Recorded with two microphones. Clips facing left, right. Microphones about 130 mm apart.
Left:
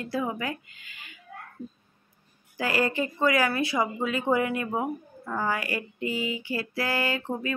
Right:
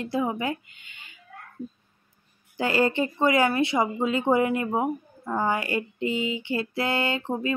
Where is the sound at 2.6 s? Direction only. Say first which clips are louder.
Right 3 dB; 25° right (ahead or behind).